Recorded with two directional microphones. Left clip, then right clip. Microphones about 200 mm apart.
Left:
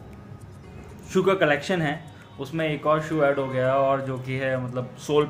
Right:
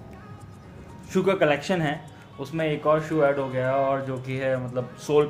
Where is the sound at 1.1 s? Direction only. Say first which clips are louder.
Left 1 dB; centre (ahead or behind).